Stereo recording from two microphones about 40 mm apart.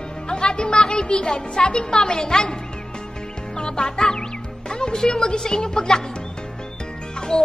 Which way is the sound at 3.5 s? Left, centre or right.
Left.